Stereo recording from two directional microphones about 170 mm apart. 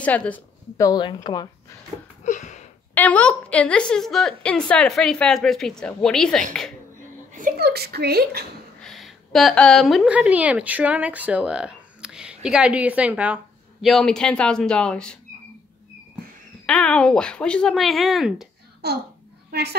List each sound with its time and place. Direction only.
0.0 s a woman's voice: 10° left (ahead or behind)
0.8 s speech: 25° left (ahead or behind)
2.2 s a sound: 45° left (ahead or behind)
2.9 s a woman's voice: 10° left (ahead or behind)
7.3 s a woman's voice: 60° right (ahead or behind)
8.8 s a woman's voice: centre (ahead or behind)
16.6 s a woman's voice: 5° left (ahead or behind)
18.8 s a woman's voice: 70° right (ahead or behind)